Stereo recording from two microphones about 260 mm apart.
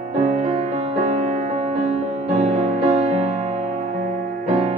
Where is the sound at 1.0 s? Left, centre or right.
Right.